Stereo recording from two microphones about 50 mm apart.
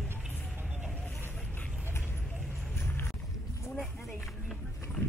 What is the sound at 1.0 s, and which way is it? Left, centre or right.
Vehicle, left.